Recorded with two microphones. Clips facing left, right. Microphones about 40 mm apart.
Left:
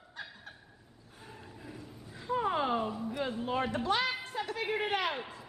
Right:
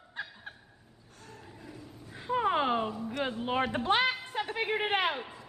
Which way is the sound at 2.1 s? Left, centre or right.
Right.